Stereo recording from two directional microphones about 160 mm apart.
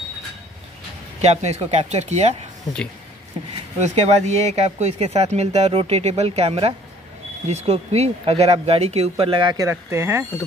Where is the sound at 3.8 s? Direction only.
45° right (ahead or behind); by 10.3 s 15° right (ahead or behind).